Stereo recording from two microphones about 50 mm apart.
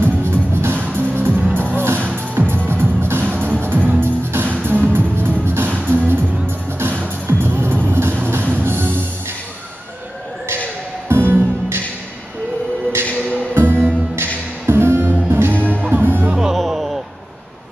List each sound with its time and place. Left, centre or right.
0.0 s music: right
4.0 s music: right
5.7 s music: right
7.2 s music: right
11.1 s music: right
13.0 s music: left
13.6 s music: right
15.5 s music: left
15.9 s music: right
16.5 s music: centre